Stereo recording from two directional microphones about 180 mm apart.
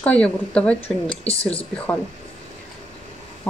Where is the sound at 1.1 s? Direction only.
35° left (ahead or behind).